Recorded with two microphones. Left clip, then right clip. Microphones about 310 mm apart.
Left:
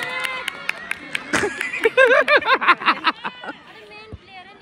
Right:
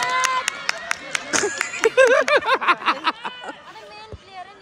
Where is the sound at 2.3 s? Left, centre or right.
Left.